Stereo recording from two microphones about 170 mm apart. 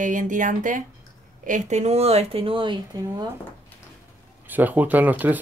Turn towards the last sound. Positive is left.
turn(degrees=-10)  # may be behind; listen again after turning